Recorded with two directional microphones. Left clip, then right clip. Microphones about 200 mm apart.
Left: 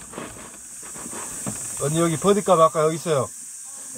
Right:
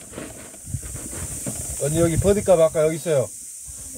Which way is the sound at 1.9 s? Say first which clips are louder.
Right 1 dB; 15° right (ahead or behind).